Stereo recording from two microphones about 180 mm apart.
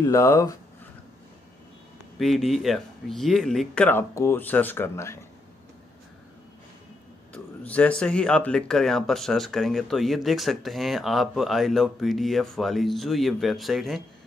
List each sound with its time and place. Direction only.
0.0 s speech: 15° left (ahead or behind)
2.1 s speech: centre (ahead or behind)
7.3 s speech: 5° left (ahead or behind)